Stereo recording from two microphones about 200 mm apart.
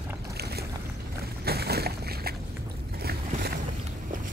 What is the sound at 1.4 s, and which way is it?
Boat, 50° right (ahead or behind).